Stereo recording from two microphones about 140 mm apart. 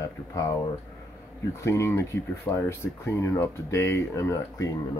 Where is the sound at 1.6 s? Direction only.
20° left (ahead or behind).